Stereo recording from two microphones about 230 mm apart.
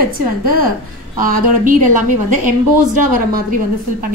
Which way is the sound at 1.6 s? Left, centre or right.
Right.